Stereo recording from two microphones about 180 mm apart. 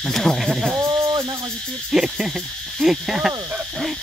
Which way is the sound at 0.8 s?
25° right (ahead or behind).